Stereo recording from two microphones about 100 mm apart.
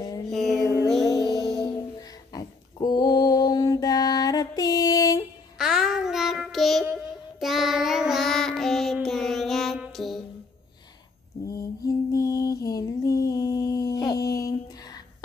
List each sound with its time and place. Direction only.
0.3 s music: centre (ahead or behind)
1.2 s music: 35° right (ahead or behind)
2.0 s a sound: 40° left (ahead or behind)
5.6 s child singing: 5° right (ahead or behind)
9.9 s music: centre (ahead or behind)
11.4 s lullaby: 35° left (ahead or behind)